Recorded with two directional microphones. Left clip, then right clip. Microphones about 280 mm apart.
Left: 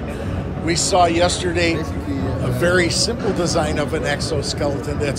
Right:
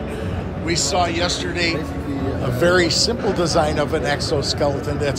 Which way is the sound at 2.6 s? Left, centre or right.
Centre.